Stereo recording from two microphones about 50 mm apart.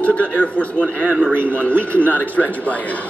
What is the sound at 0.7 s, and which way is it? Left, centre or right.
Speech, right.